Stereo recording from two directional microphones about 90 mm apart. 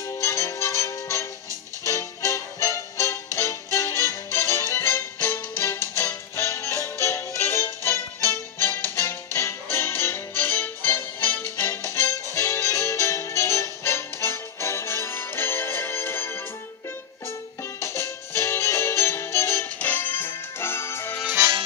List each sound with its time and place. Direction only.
0.2 s music: 35° left (ahead or behind)
17.7 s music: 30° left (ahead or behind)